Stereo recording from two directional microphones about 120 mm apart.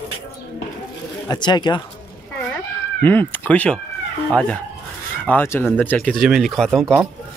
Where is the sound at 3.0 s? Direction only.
15° left (ahead or behind).